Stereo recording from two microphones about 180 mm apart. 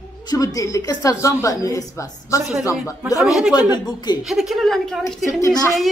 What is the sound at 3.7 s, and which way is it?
Speech, 25° left (ahead or behind).